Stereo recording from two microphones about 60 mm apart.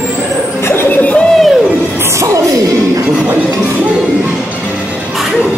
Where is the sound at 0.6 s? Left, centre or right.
Left.